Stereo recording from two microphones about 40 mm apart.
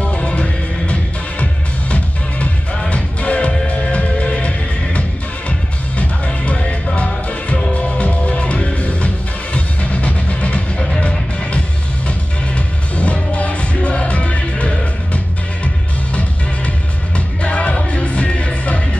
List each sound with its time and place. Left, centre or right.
0.0 s music: left
2.9 s music: left
7.7 s music: left